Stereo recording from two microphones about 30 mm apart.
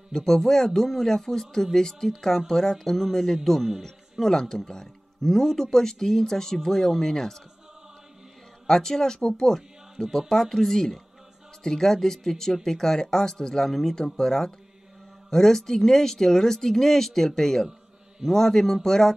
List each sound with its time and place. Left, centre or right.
0.1 s speech: centre
8.6 s speech: centre
13.7 s speech: centre
13.9 s speech: centre